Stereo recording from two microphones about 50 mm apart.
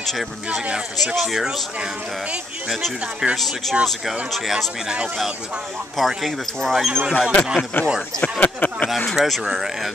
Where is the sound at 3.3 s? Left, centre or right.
Centre.